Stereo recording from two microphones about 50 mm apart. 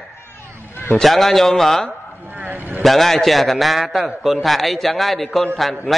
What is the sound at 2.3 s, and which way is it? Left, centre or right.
Vehicle, right.